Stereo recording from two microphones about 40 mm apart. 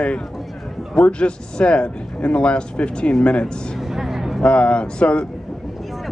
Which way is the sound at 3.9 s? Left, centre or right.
Centre.